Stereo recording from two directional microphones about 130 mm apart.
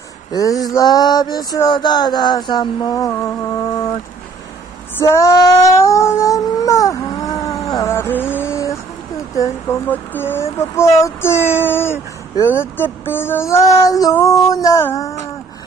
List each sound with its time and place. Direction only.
0.3 s mantra: 30° left (ahead or behind)
4.9 s a sound: 20° left (ahead or behind)
9.4 s speech: 15° left (ahead or behind)